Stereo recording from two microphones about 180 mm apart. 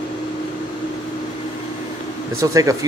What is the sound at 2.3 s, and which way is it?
Speech, 20° right (ahead or behind).